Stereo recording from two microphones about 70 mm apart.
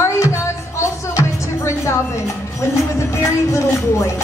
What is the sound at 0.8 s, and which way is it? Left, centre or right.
Music, left.